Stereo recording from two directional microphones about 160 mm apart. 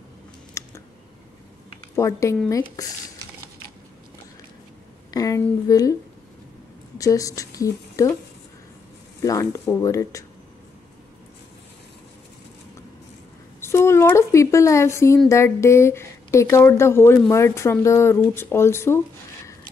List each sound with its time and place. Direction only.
0.6 s a sound: 20° left (ahead or behind)
2.0 s speech: 20° left (ahead or behind)
5.1 s speech: 20° left (ahead or behind)
7.0 s a woman's voice: 20° left (ahead or behind)
9.2 s speech: 20° left (ahead or behind)
13.6 s a woman's voice: 15° left (ahead or behind)